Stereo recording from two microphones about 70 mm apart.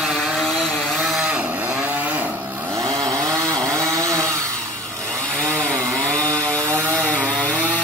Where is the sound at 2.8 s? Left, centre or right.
Right.